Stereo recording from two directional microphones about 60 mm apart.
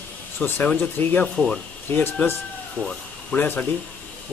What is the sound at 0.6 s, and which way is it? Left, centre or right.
Speech, left.